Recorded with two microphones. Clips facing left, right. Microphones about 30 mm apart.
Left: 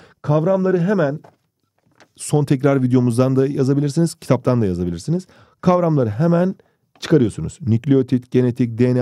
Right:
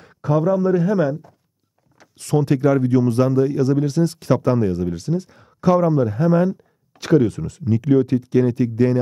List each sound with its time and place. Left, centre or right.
0.0 s a sound: centre
0.5 s speech: left
2.0 s speech: centre; by 8.9 s left